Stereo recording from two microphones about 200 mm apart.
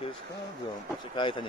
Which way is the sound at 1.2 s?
25° left (ahead or behind).